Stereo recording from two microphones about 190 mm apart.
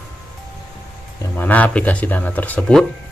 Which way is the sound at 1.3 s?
10° left (ahead or behind).